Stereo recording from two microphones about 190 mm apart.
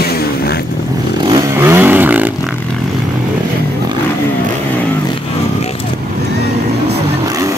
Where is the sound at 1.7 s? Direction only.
10° right (ahead or behind).